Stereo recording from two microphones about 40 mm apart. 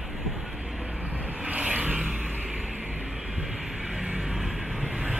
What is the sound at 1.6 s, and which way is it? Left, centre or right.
Vehicle, right.